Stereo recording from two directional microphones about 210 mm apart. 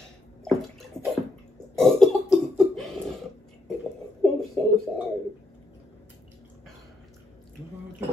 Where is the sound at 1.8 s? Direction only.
Centre (ahead or behind).